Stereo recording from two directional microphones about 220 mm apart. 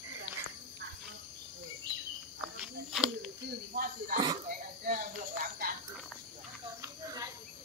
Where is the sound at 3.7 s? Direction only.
40° right (ahead or behind).